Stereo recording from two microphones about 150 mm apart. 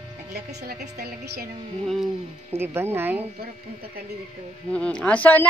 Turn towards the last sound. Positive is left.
turn(degrees=10)  # may be behind; listen again after turning